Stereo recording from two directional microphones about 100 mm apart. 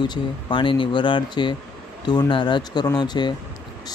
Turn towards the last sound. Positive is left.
turn(degrees=50)  # may be behind; listen again after turning